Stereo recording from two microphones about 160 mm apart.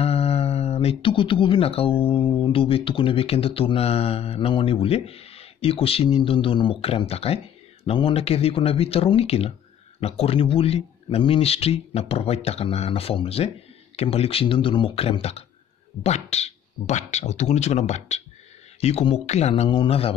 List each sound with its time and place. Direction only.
0.0 s a sound: 40° left (ahead or behind)
2.2 s speech: 10° left (ahead or behind)
2.5 s speech: 35° left (ahead or behind)